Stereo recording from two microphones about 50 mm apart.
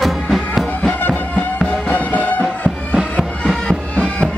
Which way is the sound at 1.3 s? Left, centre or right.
Left.